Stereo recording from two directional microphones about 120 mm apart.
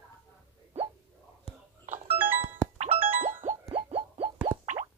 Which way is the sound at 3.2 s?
90° right.